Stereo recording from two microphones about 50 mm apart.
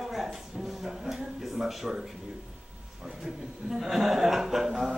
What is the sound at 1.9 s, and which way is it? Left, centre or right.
Speech, centre.